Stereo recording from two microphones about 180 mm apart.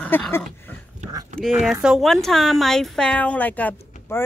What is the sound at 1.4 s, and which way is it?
A woman's voice, 5° right (ahead or behind).